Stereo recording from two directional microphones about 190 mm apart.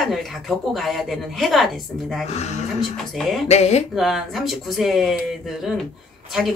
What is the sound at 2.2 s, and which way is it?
Speech, 35° left (ahead or behind).